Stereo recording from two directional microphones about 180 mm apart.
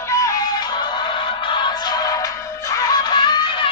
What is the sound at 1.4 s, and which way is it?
Music, 25° left (ahead or behind).